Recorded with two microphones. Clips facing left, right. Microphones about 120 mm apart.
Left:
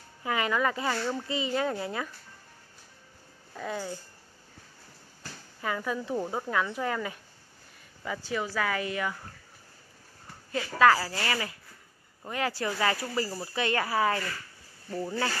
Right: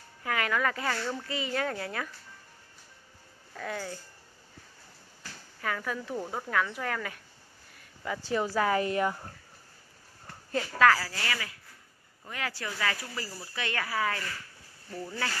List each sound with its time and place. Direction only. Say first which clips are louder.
0.2 s speech: left 2 dB; 20° left (ahead or behind)
3.5 s speech: left 2 dB; 15° left (ahead or behind)
5.6 s speech: left 2 dB; 15° left (ahead or behind)
8.5 s speech: right 5 dB; 35° right (ahead or behind)
10.5 s speech: left 2 dB; 15° left (ahead or behind)